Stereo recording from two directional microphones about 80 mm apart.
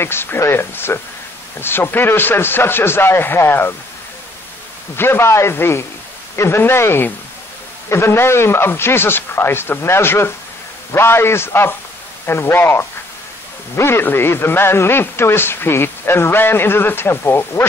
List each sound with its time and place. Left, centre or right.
0.0 s a man's voice: left
4.9 s a man's voice: left